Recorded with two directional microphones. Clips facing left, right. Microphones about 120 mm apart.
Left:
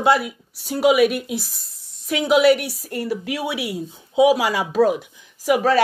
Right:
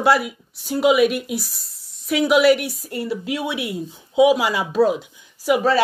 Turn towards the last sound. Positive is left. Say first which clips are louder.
# even
turn(degrees=45)  # may be behind; listen again after turning